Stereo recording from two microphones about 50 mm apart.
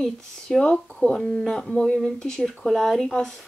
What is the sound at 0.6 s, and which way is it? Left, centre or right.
Speech, left.